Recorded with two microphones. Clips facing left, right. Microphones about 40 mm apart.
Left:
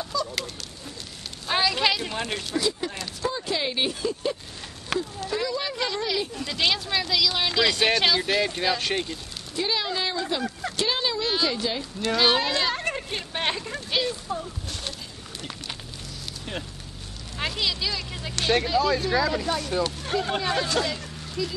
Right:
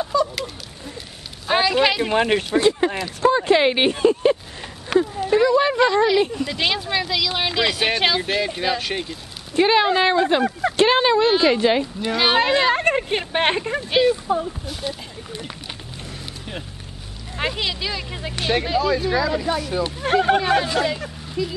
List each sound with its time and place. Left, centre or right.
0.0 s honk: right
1.5 s a sound: centre
2.0 s speech: right
4.9 s speech: right
6.4 s speech: centre
8.5 s speech: centre
9.6 s speech: right
11.8 s speech: centre
14.7 s speech: centre
17.4 s speech: right
20.3 s speech: right